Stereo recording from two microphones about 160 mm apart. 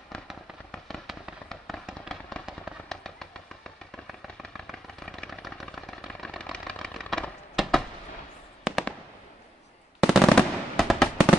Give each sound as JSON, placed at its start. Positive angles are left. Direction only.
{"t": 0.1, "sound": "fireworks", "side_deg": 5}
{"t": 4.1, "sound": "a sound", "side_deg": 0}
{"t": 8.6, "sound": "fireworks", "side_deg": 0}
{"t": 9.9, "sound": "fireworks", "side_deg": 0}